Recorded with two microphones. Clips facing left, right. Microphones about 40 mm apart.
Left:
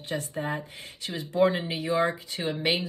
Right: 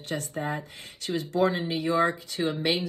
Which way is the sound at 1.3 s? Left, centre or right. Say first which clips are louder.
Left 2 dB; left.